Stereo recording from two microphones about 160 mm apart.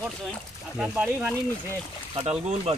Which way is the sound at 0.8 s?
5° right (ahead or behind).